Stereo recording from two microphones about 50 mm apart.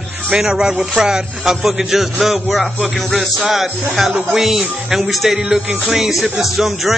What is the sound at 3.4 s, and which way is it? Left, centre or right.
A man's voice, centre.